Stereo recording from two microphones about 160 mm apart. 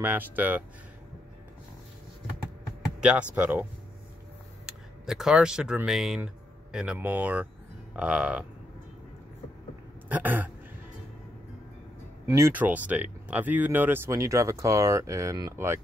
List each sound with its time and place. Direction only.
0.0 s speech: 10° right (ahead or behind)
3.0 s speech: 5° right (ahead or behind)
4.6 s speech: 5° right (ahead or behind)
10.0 s throat clearing: 10° right (ahead or behind)
12.3 s speech: 15° right (ahead or behind)